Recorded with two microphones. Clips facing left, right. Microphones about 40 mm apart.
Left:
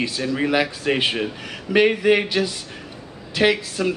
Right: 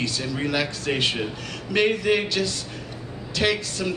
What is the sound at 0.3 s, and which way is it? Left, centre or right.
Speech, centre.